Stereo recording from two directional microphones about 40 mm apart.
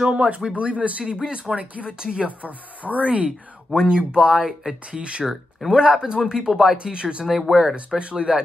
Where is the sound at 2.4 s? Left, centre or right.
Right.